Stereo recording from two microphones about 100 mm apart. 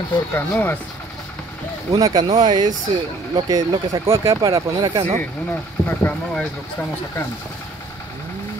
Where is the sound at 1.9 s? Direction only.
40° right (ahead or behind).